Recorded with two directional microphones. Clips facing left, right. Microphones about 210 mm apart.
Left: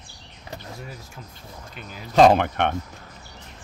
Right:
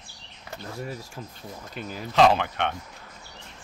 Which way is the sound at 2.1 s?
45° left (ahead or behind).